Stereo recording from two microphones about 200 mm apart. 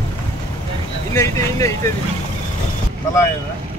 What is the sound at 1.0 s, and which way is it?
Speech, 15° left (ahead or behind).